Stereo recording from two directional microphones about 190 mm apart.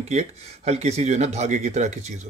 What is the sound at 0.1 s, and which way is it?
Speech, 35° right (ahead or behind).